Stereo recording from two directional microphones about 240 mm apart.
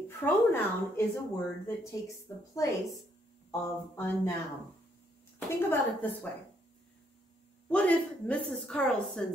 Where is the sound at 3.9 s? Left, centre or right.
Centre.